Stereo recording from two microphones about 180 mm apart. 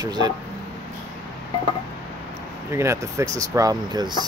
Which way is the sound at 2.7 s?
15° right (ahead or behind).